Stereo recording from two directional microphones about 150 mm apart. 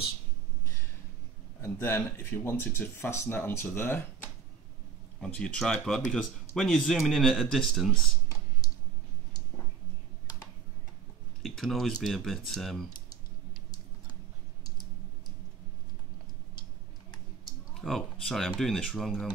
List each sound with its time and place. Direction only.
1.6 s speech: 15° left (ahead or behind)
5.2 s speech: 5° left (ahead or behind)
11.4 s speech: centre (ahead or behind)
17.8 s speech: centre (ahead or behind)